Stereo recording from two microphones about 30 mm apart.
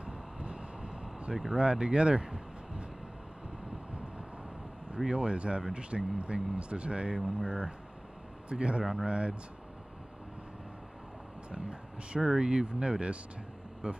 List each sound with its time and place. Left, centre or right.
0.0 s vehicle: right
1.5 s speech: right
4.9 s speech: right
11.5 s speech: right